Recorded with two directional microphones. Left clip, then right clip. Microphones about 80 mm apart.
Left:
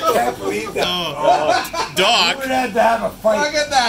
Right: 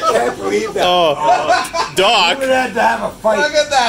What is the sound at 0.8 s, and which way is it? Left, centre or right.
Speech, right.